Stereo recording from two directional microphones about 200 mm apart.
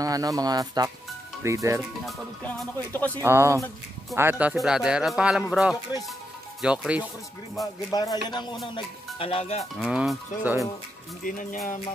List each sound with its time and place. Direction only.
0.0 s speech: 15° right (ahead or behind)
2.0 s music: 10° left (ahead or behind)
3.2 s speech: 15° right (ahead or behind)
7.5 s speech: 20° left (ahead or behind)
9.8 s speech: centre (ahead or behind)
11.2 s music: 40° left (ahead or behind)